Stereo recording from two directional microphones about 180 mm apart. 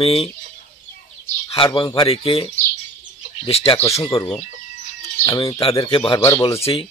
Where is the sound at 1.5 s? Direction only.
25° left (ahead or behind).